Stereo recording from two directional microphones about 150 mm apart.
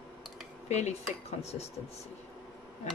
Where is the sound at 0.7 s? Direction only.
45° left (ahead or behind).